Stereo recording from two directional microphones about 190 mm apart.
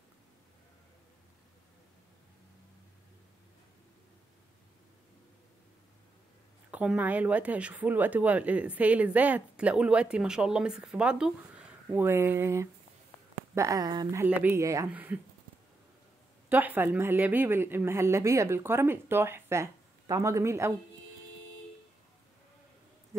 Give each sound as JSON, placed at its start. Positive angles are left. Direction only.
{"t": 6.7, "sound": "speech", "side_deg": -5}
{"t": 14.2, "sound": "speech", "side_deg": -10}
{"t": 16.4, "sound": "speech", "side_deg": -10}